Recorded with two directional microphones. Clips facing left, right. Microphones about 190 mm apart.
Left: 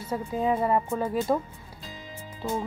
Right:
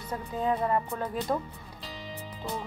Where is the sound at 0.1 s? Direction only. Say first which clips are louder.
Left 3 dB; 5° left (ahead or behind).